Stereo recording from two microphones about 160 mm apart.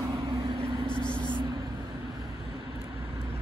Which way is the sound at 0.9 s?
30° left (ahead or behind).